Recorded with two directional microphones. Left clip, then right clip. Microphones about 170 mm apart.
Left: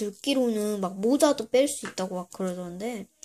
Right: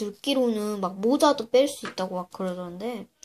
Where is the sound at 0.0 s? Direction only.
10° left (ahead or behind).